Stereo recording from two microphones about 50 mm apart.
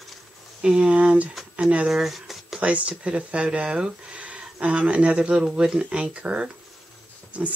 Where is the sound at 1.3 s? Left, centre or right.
Centre.